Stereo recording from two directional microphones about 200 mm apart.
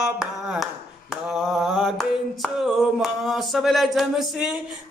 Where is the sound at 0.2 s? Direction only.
5° right (ahead or behind).